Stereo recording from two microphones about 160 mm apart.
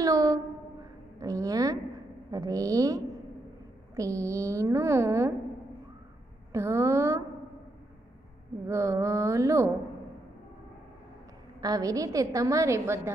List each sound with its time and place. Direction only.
0.0 s a sound: 20° right (ahead or behind)
1.2 s a woman's voice: 20° right (ahead or behind)
6.5 s speech: 20° right (ahead or behind)
8.6 s a woman's voice: 20° right (ahead or behind)
11.6 s a woman's voice: 20° right (ahead or behind)